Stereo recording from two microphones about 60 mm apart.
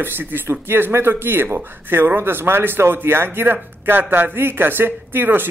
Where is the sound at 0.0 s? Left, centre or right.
Right.